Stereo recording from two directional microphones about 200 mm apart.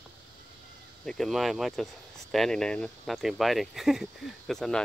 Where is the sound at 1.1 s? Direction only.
Centre (ahead or behind).